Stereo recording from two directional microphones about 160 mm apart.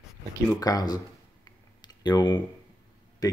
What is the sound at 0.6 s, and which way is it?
Speech, 25° left (ahead or behind).